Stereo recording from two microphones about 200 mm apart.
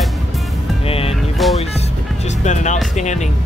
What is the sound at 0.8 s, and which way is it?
Speech, 30° left (ahead or behind).